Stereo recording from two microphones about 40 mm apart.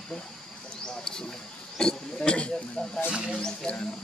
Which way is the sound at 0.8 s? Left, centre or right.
Centre.